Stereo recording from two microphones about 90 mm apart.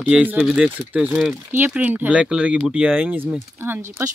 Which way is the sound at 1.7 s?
15° right (ahead or behind).